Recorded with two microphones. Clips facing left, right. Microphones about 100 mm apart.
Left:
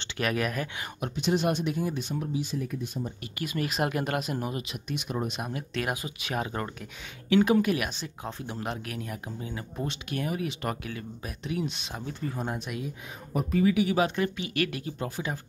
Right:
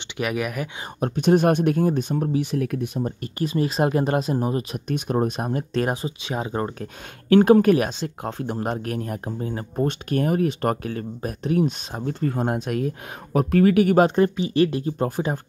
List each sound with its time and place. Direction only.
0.2 s speech: 15° right (ahead or behind)
1.0 s speech: 50° right (ahead or behind)
3.3 s speech: 30° right (ahead or behind)
6.8 s speech: 45° right (ahead or behind)
13.3 s speech: 70° right (ahead or behind); by 15.4 s 50° right (ahead or behind)